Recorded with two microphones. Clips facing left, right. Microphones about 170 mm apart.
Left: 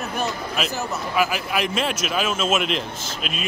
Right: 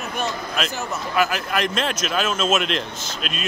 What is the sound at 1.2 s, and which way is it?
Speech, 5° left (ahead or behind).